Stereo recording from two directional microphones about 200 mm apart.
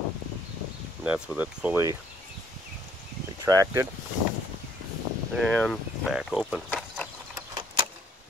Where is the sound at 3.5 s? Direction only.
15° right (ahead or behind).